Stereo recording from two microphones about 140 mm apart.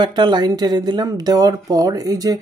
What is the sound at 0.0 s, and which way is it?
Speech, 35° right (ahead or behind).